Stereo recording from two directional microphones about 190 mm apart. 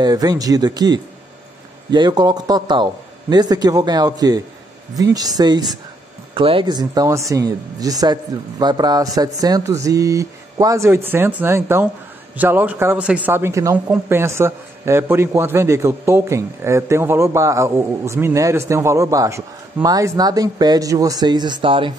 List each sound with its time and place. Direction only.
0.0 s a man's voice: 20° right (ahead or behind)